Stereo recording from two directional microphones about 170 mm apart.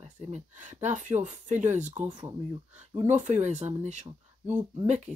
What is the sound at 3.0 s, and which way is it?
Speech, 45° right (ahead or behind).